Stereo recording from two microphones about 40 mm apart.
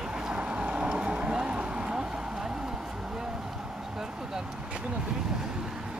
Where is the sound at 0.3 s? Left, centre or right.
Right.